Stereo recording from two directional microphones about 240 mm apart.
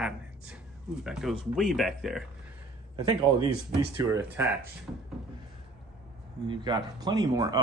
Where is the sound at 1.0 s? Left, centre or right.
Centre.